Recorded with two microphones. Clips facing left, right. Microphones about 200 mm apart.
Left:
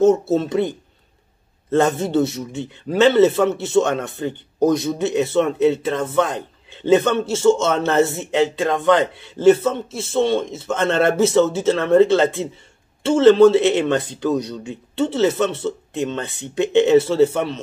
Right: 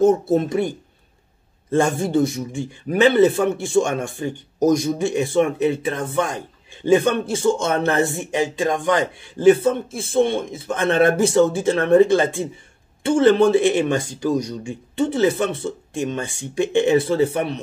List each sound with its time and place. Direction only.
0.0 s a man's voice: 15° right (ahead or behind)
9.8 s speech: 50° right (ahead or behind)
10.7 s a man's voice: 15° right (ahead or behind)